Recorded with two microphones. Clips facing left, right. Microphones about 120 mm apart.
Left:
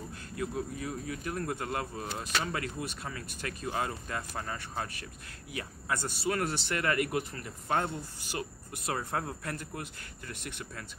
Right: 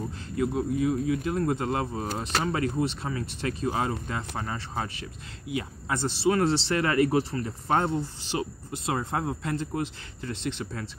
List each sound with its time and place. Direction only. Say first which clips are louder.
0.4 s speech: right 9 dB; 25° right (ahead or behind)
5.5 s speech: right 5 dB; 20° right (ahead or behind)